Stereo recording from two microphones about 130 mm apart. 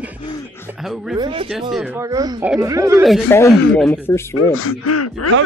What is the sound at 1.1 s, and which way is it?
Speech, 35° right (ahead or behind).